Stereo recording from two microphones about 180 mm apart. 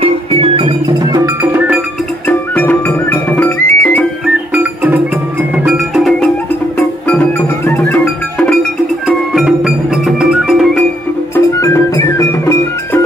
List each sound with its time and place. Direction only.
0.0 s music: 30° right (ahead or behind); by 1.8 s 10° right (ahead or behind)
2.2 s music: 10° left (ahead or behind)
5.6 s music: 5° right (ahead or behind)
9.0 s music: centre (ahead or behind)
11.3 s music: 15° left (ahead or behind)